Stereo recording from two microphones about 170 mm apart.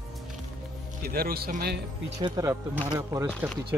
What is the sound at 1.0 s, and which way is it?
Speech, 60° right (ahead or behind).